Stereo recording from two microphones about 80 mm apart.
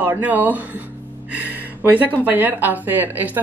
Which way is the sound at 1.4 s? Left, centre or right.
Centre.